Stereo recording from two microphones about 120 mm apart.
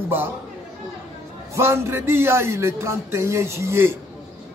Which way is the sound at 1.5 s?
20° right (ahead or behind).